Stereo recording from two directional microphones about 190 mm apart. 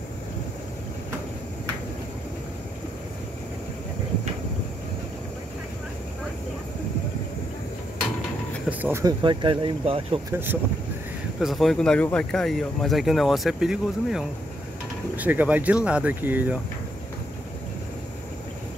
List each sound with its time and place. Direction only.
8.6 s a sound: 10° right (ahead or behind)
9.0 s speech: 25° right (ahead or behind)
10.3 s speech: 10° right (ahead or behind)
11.3 s speech: centre (ahead or behind)